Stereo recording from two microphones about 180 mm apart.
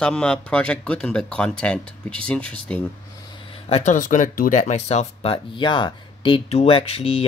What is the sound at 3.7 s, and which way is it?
Speech, 40° left (ahead or behind).